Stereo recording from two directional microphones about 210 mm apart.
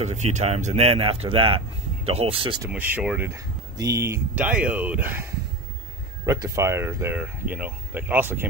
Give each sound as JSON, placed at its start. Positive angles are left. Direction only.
{"t": 0.0, "sound": "speech", "side_deg": -35}
{"t": 2.7, "sound": "speech", "side_deg": -5}